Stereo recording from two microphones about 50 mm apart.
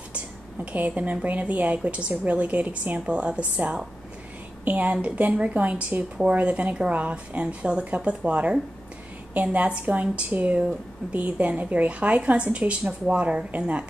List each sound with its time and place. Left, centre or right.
0.7 s a woman's voice: right